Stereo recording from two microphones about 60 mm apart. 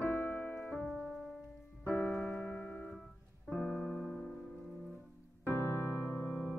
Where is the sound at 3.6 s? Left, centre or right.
Centre.